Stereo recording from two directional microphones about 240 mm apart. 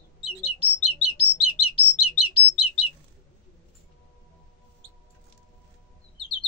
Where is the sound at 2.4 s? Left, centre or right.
Left.